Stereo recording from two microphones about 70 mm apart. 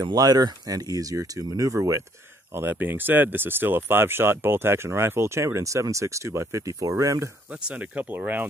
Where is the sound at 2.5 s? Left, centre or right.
Right.